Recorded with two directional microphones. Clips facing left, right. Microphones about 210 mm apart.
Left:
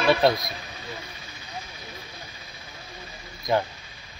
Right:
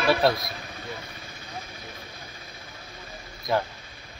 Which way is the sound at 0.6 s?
50° right (ahead or behind).